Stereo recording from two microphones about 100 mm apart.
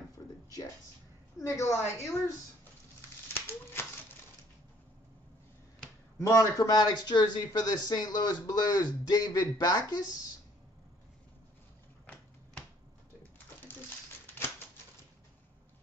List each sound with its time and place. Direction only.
1.4 s a man's voice: 30° left (ahead or behind)
3.3 s a sound: 25° left (ahead or behind)
6.1 s a man's voice: 35° left (ahead or behind)